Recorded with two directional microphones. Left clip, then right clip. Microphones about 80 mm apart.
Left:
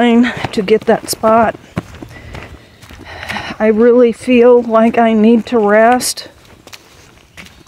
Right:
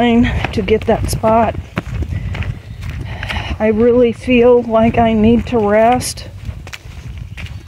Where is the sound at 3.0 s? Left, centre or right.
Left.